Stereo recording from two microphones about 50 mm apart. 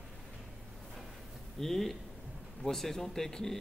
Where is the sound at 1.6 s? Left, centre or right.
Centre.